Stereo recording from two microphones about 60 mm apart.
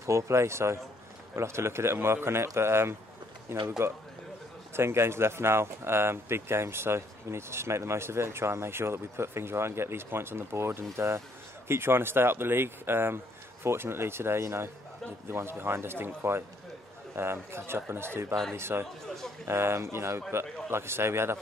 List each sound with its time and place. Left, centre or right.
0.0 s speech: right
4.7 s speech: right